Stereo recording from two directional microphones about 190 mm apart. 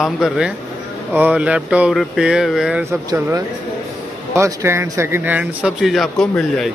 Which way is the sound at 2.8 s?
15° right (ahead or behind).